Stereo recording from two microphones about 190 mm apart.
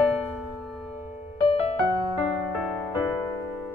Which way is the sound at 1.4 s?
30° left (ahead or behind).